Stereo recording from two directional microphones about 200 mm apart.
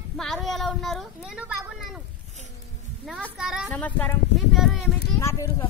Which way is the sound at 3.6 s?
10° left (ahead or behind).